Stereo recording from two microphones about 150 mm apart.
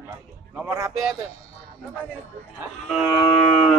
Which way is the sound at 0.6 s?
20° right (ahead or behind).